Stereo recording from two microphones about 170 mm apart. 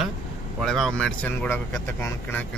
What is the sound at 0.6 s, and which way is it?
Speech, 5° left (ahead or behind).